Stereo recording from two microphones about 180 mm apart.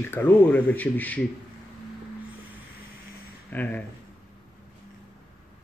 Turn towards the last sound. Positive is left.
turn(degrees=10)  # may be behind; listen again after turning